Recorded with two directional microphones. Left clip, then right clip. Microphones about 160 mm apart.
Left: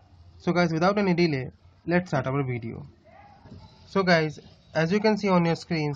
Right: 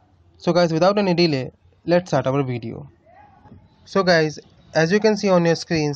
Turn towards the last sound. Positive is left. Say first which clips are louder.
# right 8 dB
turn(degrees=-30)  # may be behind; listen again after turning